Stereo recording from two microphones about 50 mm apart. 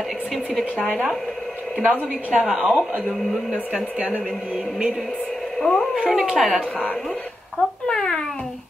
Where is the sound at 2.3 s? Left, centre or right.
Right.